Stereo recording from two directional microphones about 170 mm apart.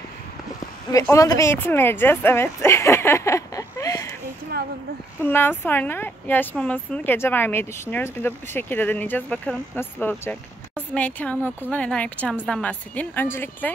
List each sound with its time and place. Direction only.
0.9 s a woman's voice: 20° left (ahead or behind)
5.2 s speech: 10° left (ahead or behind)